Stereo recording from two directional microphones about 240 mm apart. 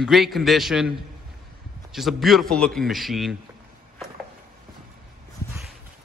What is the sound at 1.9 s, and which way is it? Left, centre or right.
A man's voice, centre.